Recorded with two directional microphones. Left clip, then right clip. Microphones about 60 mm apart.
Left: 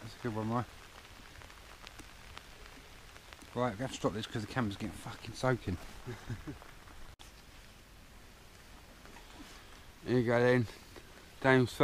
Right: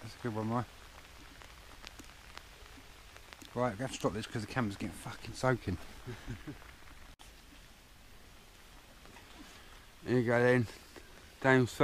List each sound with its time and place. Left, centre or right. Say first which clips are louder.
0.0 s speech: even; right
3.5 s speech: even; right
6.5 s a sound: left 2 dB; left
10.0 s speech: even; right
11.3 s speech: even; centre